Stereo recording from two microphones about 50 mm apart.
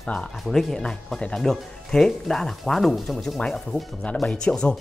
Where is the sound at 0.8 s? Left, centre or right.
Centre.